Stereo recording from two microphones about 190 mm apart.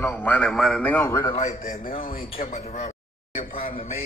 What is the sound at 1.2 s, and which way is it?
A man's voice, 35° left (ahead or behind).